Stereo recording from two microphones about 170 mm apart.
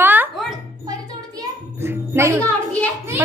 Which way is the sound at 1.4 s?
15° right (ahead or behind).